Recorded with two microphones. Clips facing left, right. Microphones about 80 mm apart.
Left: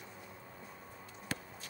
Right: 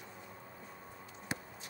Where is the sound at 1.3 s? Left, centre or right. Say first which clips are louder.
Even; centre.